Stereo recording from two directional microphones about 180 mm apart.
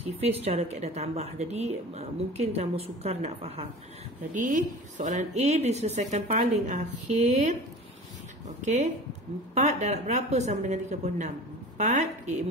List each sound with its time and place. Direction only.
0.2 s a woman's voice: 35° right (ahead or behind)